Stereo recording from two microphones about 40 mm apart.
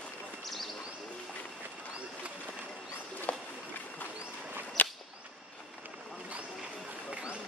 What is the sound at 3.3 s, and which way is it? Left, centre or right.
Run, left.